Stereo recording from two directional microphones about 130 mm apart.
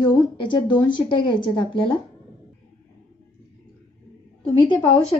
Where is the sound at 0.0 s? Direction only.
35° left (ahead or behind).